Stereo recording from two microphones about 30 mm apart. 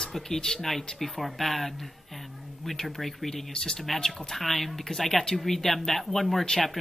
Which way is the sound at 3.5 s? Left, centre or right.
Left.